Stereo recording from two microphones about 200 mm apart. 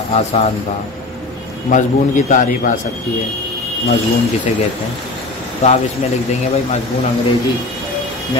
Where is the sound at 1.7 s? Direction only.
40° left (ahead or behind).